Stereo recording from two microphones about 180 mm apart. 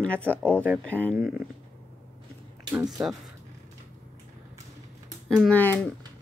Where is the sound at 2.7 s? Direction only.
5° right (ahead or behind).